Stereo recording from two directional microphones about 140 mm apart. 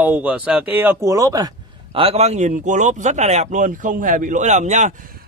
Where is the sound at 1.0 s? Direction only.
25° right (ahead or behind).